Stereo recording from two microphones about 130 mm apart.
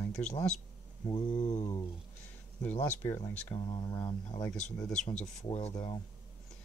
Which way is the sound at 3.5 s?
40° left (ahead or behind).